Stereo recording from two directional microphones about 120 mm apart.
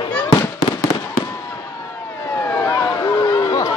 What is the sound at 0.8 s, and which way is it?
Fireworks, 25° left (ahead or behind).